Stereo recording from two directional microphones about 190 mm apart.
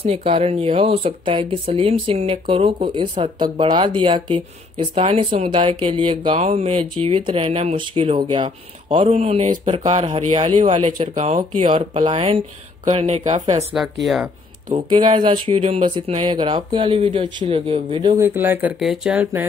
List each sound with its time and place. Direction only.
0.0 s speech: 30° right (ahead or behind)
11.6 s speech: 25° right (ahead or behind)
14.0 s speech: centre (ahead or behind)
14.9 s speech: 25° right (ahead or behind); by 19.4 s 5° right (ahead or behind)